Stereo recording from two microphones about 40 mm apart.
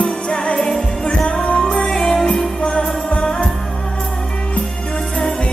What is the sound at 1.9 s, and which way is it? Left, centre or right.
Music, centre.